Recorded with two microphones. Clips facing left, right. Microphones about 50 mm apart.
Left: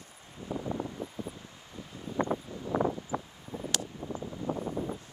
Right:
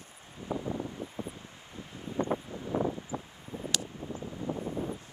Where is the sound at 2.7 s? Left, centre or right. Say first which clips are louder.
Left 2 dB; left.